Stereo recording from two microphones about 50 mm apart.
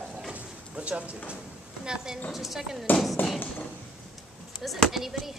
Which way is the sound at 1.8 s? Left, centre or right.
Centre.